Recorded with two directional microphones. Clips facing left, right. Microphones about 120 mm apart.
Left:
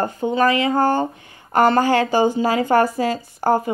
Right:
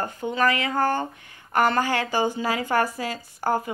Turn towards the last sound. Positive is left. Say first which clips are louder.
# left 6 dB
turn(degrees=30)  # may be behind; listen again after turning